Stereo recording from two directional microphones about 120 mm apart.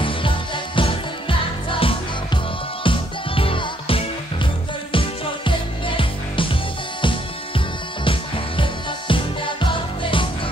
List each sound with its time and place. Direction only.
0.0 s music: 45° left (ahead or behind)
8.0 s music: 45° left (ahead or behind)